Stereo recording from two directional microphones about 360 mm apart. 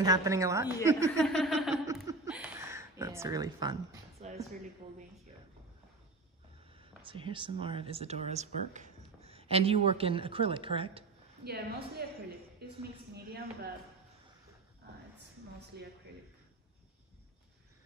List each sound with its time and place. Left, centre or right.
0.0 s a woman's voice: centre
0.8 s laughter: centre
6.7 s speech: centre
11.4 s a woman's voice: right
12.6 s a sound: right
15.7 s a woman's voice: right